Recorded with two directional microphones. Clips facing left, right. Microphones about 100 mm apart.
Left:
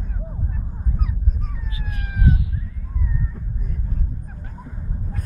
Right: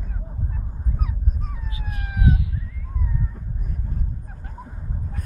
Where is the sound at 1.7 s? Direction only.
30° right (ahead or behind).